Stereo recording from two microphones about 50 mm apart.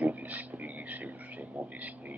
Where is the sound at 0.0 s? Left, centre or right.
Right.